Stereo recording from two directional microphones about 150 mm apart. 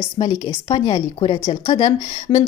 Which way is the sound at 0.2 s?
30° left (ahead or behind).